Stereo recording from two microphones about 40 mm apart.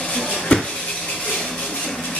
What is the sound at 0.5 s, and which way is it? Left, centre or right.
Dishes, left.